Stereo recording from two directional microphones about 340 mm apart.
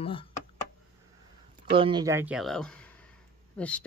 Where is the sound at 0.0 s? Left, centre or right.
Centre.